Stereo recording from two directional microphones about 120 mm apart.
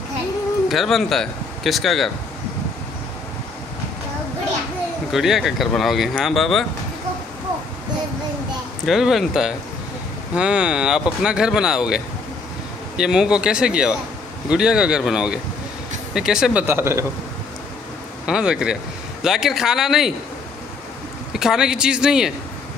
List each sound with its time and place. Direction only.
0.7 s speech: centre (ahead or behind)
5.1 s a man's voice: centre (ahead or behind)
8.8 s a man's voice: centre (ahead or behind)
16.6 s a man's voice: 20° right (ahead or behind)
18.2 s a man's voice: 5° right (ahead or behind)
21.3 s a man's voice: 5° right (ahead or behind)